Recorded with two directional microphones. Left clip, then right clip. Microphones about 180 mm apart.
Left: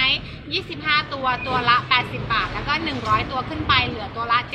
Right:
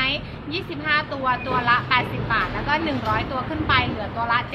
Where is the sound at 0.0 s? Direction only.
15° right (ahead or behind).